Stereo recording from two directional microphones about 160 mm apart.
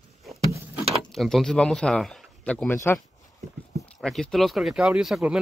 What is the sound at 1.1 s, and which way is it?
Speech, centre (ahead or behind).